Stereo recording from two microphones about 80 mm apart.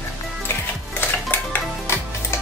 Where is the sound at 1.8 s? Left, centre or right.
Left.